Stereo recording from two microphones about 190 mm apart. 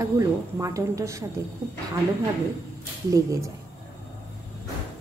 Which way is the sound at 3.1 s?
15° right (ahead or behind).